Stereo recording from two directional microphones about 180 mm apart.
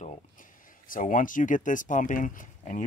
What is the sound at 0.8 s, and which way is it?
Speech, 45° left (ahead or behind).